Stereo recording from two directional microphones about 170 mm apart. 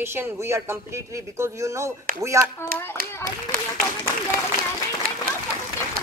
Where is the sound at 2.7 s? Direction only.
60° right (ahead or behind).